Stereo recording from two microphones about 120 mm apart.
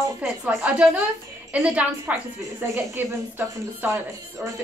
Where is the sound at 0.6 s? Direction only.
5° right (ahead or behind).